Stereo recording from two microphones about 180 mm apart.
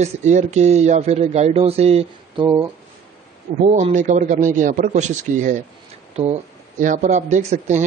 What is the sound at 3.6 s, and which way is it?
Speech, 45° right (ahead or behind).